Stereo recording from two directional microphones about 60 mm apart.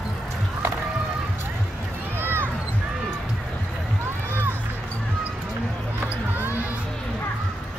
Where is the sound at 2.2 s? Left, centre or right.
Right.